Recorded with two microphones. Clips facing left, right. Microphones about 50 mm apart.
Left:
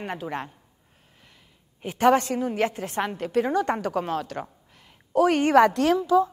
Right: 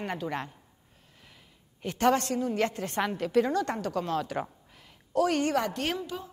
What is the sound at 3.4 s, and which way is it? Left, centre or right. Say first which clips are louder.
Speech: left 5 dB; centre.